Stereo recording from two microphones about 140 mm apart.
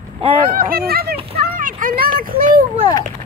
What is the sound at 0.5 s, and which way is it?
Speech, 90° right.